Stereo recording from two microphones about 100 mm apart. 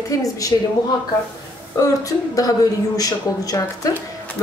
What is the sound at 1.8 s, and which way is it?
A woman's voice, 35° left (ahead or behind).